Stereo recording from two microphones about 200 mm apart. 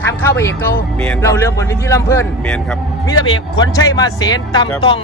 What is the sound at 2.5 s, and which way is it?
Speech, 5° left (ahead or behind).